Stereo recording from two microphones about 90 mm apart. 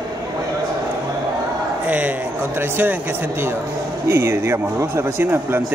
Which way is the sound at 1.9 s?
20° right (ahead or behind).